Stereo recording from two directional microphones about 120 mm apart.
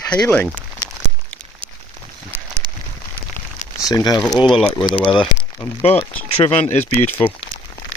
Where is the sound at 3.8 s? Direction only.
30° left (ahead or behind).